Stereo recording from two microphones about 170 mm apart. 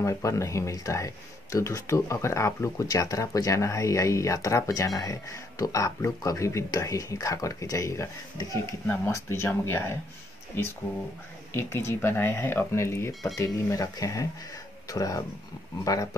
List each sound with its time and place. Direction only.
0.0 s speech: 15° left (ahead or behind)
11.5 s speech: 15° left (ahead or behind)